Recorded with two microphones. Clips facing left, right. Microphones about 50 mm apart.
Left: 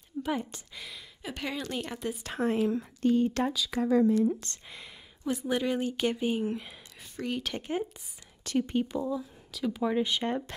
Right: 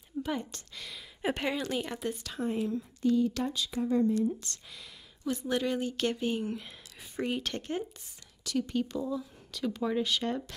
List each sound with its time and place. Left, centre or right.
0.5 s a woman's voice: centre
1.3 s speech: centre
1.6 s speech: centre
2.3 s speech: left
3.7 s speech: left
4.5 s speech: left
5.2 s a woman's voice: centre
7.2 s speech: centre
7.5 s a woman's voice: centre
8.5 s speech: left
8.8 s a woman's voice: centre